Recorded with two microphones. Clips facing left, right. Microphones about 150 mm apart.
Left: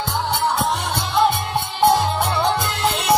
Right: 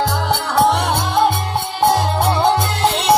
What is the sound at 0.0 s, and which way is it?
Music, 90° right.